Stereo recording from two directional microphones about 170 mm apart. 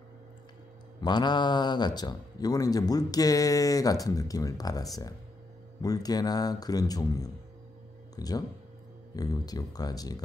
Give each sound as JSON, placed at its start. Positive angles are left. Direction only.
{"t": 1.0, "sound": "a man's voice", "side_deg": 25}